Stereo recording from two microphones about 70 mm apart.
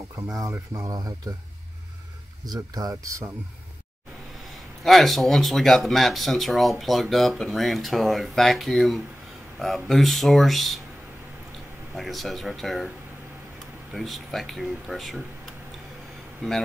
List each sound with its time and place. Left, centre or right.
0.3 s speech: right
0.9 s speech: right
2.4 s speech: right
4.8 s speech: centre
11.9 s speech: centre
13.9 s speech: centre